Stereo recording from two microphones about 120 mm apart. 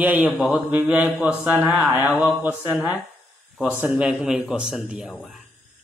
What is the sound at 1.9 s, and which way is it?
A man's voice, 15° right (ahead or behind).